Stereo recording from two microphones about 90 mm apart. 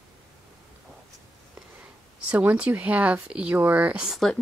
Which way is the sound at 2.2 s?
15° right (ahead or behind).